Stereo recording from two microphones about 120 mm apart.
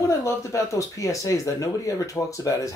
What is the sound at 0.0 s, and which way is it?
Speech, 25° left (ahead or behind).